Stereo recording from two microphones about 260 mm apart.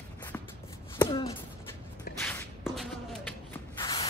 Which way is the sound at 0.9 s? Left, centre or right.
Centre.